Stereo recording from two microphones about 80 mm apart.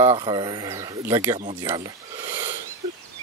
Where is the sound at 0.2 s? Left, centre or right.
Right.